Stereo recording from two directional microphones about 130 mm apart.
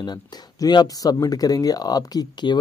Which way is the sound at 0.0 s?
30° left (ahead or behind).